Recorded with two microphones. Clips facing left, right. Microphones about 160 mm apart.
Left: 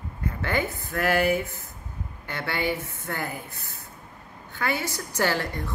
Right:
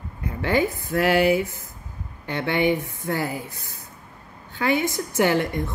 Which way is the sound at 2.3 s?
20° right (ahead or behind).